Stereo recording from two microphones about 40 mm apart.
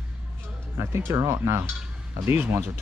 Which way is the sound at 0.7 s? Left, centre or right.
Right.